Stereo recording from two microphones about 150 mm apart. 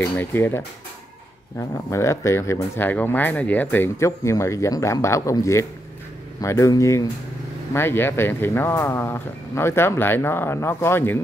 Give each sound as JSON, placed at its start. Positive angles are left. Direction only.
{"t": 0.0, "sound": "speech", "side_deg": 15}